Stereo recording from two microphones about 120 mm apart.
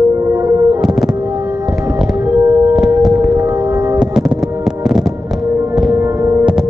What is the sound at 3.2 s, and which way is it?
Singing bowl, 20° right (ahead or behind).